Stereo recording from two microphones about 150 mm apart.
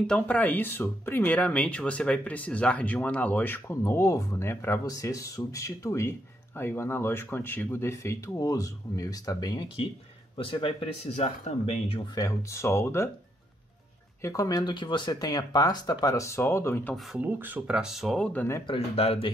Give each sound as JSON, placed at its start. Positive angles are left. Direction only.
{"t": 0.0, "sound": "speech", "side_deg": 10}
{"t": 12.2, "sound": "speech", "side_deg": 20}
{"t": 14.2, "sound": "speech", "side_deg": 20}
{"t": 17.2, "sound": "speech", "side_deg": -10}
{"t": 18.7, "sound": "speech", "side_deg": 40}